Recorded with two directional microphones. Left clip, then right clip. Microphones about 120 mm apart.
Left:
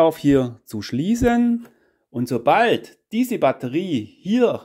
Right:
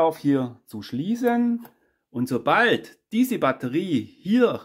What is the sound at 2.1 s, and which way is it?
Speech, 30° left (ahead or behind).